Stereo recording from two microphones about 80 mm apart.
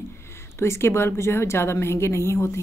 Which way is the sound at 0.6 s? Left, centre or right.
Left.